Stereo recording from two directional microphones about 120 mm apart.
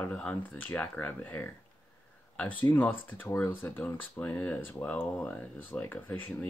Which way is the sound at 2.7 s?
15° left (ahead or behind).